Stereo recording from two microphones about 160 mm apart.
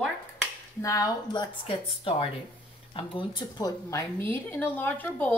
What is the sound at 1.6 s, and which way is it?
A woman's voice, 35° left (ahead or behind).